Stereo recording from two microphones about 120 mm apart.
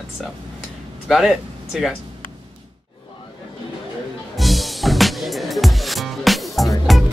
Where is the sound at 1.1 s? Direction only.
Centre (ahead or behind).